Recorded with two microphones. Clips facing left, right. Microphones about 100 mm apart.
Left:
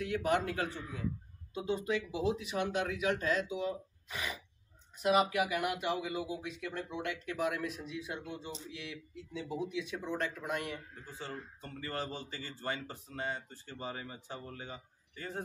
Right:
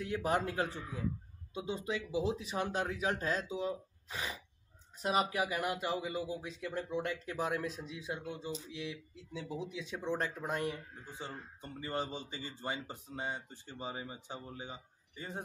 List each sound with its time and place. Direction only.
0.0 s speech: 30° right (ahead or behind)
5.1 s speech: 30° right (ahead or behind)
11.1 s speech: 20° right (ahead or behind)